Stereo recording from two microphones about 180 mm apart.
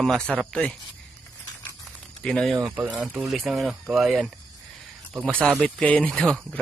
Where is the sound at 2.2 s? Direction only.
Centre (ahead or behind).